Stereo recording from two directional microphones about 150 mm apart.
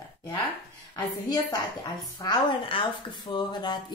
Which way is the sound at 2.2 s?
25° left (ahead or behind).